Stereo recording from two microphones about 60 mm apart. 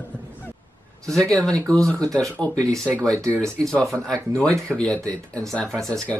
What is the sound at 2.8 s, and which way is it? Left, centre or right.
Speech, right.